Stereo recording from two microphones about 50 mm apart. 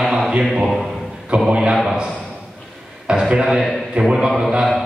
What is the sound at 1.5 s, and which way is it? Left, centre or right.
Speech, centre.